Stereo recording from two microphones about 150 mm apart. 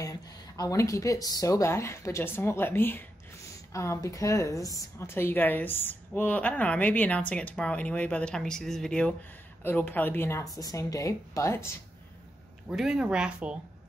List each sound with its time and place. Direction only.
0.0 s a woman's voice: 25° left (ahead or behind)
12.6 s speech: 5° right (ahead or behind)